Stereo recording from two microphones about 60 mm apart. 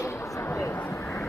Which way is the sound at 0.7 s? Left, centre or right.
Left.